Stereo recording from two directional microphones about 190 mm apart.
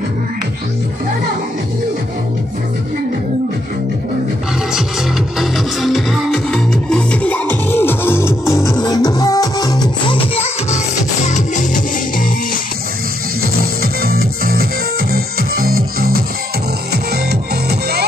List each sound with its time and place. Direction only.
5.4 s music: centre (ahead or behind); by 11.8 s 40° left (ahead or behind)
14.0 s music: 50° right (ahead or behind)